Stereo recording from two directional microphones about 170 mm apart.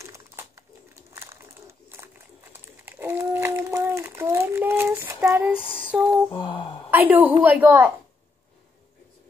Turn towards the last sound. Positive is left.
turn(degrees=-10)  # may be behind; listen again after turning